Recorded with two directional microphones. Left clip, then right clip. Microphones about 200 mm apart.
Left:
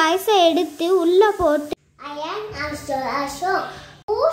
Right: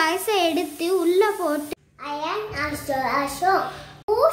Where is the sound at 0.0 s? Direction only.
20° left (ahead or behind).